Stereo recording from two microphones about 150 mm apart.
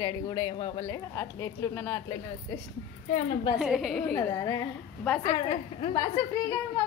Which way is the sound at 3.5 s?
5° right (ahead or behind).